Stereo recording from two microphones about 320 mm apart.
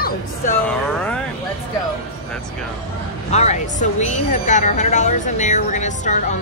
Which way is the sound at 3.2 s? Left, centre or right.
Left.